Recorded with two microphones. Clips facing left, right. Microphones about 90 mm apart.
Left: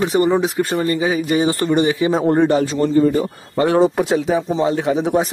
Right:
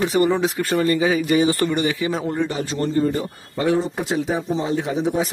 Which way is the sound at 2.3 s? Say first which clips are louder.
Left 9 dB; 50° left (ahead or behind).